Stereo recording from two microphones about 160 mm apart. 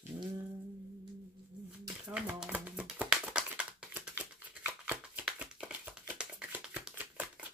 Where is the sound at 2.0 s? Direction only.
5° right (ahead or behind).